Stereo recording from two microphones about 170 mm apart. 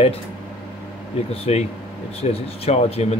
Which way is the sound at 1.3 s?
40° left (ahead or behind).